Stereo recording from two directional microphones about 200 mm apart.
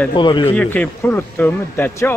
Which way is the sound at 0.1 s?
25° left (ahead or behind).